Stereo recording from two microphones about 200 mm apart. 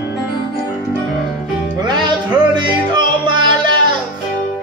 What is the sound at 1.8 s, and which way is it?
Music, 20° right (ahead or behind).